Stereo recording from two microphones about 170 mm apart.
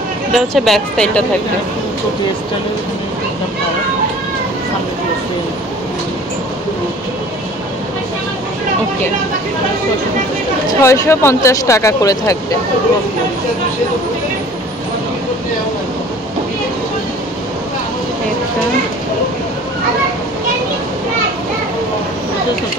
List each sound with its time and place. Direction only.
0.3 s speech: centre (ahead or behind)
10.7 s speech: 20° left (ahead or behind)